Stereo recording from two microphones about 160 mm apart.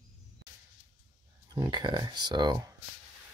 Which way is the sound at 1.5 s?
25° right (ahead or behind).